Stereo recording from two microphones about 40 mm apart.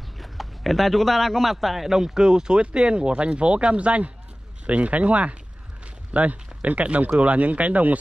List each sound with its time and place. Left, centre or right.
0.2 s speech: centre; by 8.0 s right